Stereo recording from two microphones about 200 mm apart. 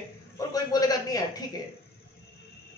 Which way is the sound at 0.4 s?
20° left (ahead or behind).